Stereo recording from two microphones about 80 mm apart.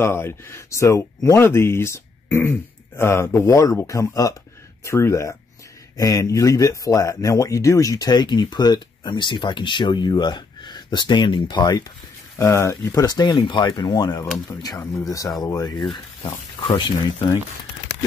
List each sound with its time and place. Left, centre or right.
0.0 s speech: left
1.4 s speech: left
5.9 s speech: left
12.4 s speech: left
14.6 s speech: left
15.6 s speech: left